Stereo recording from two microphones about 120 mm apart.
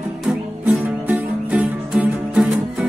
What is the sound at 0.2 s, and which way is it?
Music, centre (ahead or behind).